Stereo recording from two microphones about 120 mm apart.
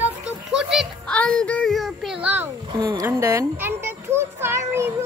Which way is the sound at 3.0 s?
25° right (ahead or behind).